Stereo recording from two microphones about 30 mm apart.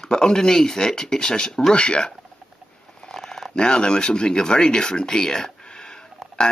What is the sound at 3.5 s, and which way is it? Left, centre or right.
Speech, left.